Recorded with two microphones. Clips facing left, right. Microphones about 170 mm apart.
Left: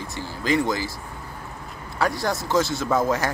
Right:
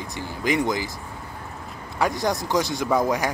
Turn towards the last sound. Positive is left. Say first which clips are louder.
# even
turn(degrees=-15)  # may be behind; listen again after turning